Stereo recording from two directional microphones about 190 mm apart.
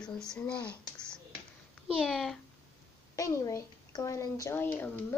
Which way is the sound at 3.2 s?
15° left (ahead or behind).